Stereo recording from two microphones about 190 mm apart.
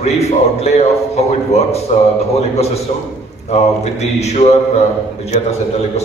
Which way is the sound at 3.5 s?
35° left (ahead or behind).